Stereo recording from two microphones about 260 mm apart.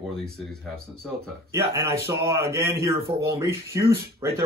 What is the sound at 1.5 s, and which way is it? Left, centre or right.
Speech, centre.